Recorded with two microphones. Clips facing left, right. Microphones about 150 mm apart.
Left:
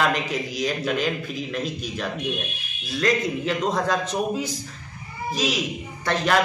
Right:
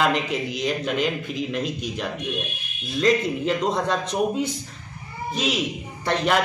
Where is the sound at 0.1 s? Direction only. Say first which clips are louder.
Right 2 dB; 25° right (ahead or behind).